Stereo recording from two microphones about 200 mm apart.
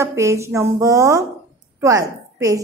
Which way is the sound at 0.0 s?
15° right (ahead or behind).